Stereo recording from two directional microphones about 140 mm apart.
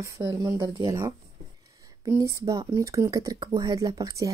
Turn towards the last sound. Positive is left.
turn(degrees=-25)  # may be behind; listen again after turning